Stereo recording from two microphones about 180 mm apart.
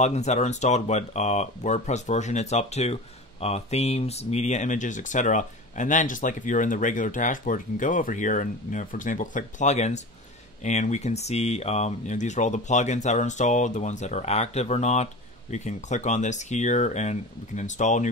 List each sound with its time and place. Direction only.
0.0 s speech: 40° left (ahead or behind)